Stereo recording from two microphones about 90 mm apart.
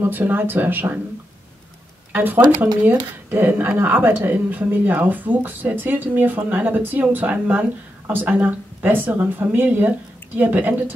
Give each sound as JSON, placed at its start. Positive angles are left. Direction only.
{"t": 0.0, "sound": "speech", "side_deg": -20}
{"t": 2.1, "sound": "speech", "side_deg": -20}